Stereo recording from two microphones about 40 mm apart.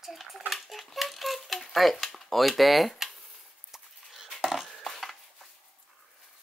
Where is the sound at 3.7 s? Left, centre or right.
Centre.